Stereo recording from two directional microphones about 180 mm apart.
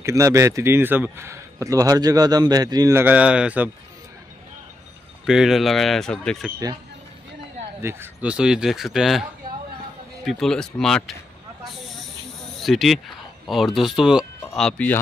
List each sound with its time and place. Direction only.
0.0 s speech: 15° right (ahead or behind)
5.2 s speech: centre (ahead or behind)
7.8 s speech: 15° right (ahead or behind)
10.2 s speech: centre (ahead or behind)
12.5 s speech: centre (ahead or behind)